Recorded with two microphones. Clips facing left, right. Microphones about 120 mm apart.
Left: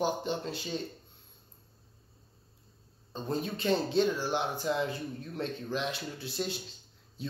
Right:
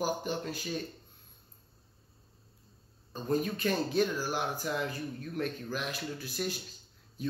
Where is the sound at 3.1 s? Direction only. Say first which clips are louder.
Right 3 dB; 25° left (ahead or behind).